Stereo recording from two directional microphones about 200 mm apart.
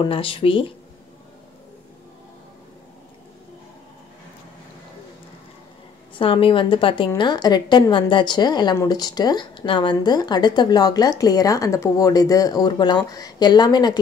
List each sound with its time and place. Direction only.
0.0 s a woman's voice: 25° left (ahead or behind)
6.1 s a woman's voice: 25° left (ahead or behind)